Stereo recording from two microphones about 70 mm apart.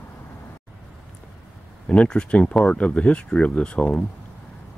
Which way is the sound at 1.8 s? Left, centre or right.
Centre.